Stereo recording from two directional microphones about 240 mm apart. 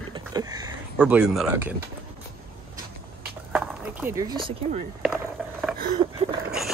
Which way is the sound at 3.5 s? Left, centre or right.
Centre.